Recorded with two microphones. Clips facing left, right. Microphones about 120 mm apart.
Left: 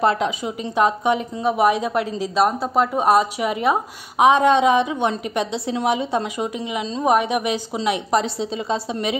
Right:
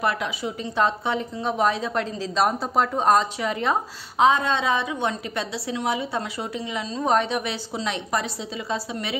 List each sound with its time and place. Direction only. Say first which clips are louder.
0.0 s a woman's voice: left 6 dB; 25° left (ahead or behind)
0.7 s a woman's voice: left 5 dB; 15° left (ahead or behind)
2.3 s a woman's voice: left 3 dB; centre (ahead or behind); by 9.1 s 20° left (ahead or behind)